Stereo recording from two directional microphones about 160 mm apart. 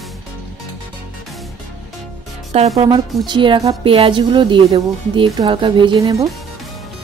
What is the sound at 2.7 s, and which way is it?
Speech, 30° right (ahead or behind).